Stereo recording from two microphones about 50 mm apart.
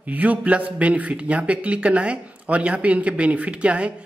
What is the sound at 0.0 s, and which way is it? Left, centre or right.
Speech, right.